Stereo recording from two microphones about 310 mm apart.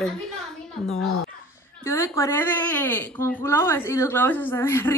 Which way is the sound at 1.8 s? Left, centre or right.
Centre.